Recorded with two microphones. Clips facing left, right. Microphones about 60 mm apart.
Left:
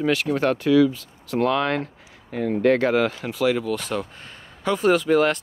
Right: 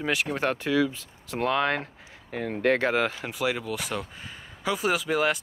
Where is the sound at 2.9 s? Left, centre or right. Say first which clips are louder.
Left 5 dB; right.